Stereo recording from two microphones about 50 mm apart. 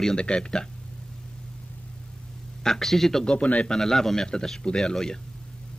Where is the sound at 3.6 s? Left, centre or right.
Centre.